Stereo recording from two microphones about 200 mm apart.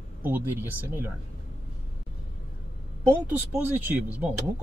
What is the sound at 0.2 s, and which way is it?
Speech, 10° right (ahead or behind).